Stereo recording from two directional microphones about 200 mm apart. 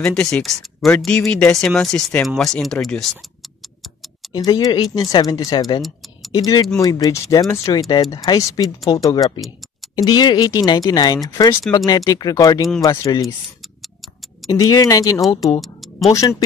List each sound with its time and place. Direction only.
0.0 s speech: 5° left (ahead or behind)
4.3 s speech: 20° left (ahead or behind)
14.5 s speech: 15° left (ahead or behind)